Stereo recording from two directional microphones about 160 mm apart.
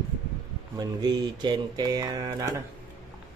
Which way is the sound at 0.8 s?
25° right (ahead or behind).